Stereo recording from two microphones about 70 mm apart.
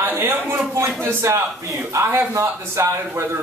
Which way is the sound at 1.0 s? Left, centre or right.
Right.